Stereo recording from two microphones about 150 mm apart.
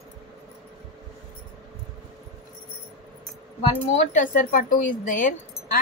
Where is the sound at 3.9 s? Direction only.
50° left (ahead or behind).